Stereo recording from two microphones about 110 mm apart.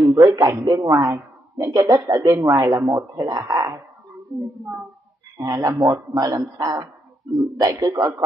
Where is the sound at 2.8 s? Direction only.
30° right (ahead or behind).